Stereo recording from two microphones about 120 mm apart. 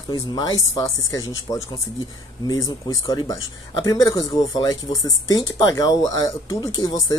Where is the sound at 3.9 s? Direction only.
30° left (ahead or behind).